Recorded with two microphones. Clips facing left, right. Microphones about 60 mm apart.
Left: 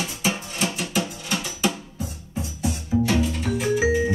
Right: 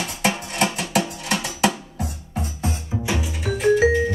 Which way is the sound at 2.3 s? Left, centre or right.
Right.